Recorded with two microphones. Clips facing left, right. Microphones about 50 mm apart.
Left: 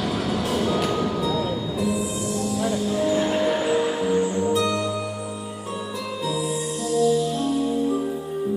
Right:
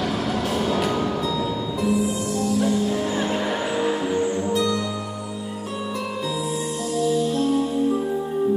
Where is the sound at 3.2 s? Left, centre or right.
Right.